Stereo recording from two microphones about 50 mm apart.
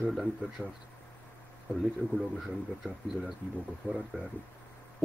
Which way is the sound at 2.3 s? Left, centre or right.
Centre.